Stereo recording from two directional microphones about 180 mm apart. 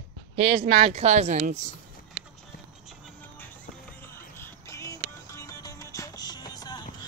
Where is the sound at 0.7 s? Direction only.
35° right (ahead or behind).